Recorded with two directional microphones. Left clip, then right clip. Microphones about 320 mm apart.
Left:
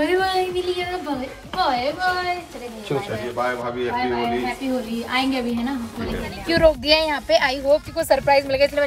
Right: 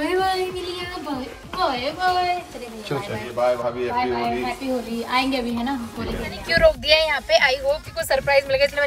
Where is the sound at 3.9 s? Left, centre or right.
Centre.